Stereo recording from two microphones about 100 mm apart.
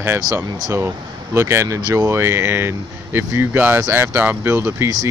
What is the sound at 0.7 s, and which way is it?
Speech, 25° right (ahead or behind).